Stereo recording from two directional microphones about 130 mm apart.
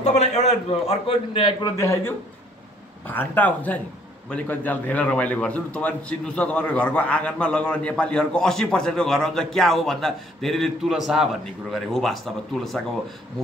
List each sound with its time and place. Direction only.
0.0 s a man's voice: 60° left (ahead or behind); by 1.7 s 40° left (ahead or behind)
1.8 s a man's voice: 25° left (ahead or behind); by 12.2 s centre (ahead or behind)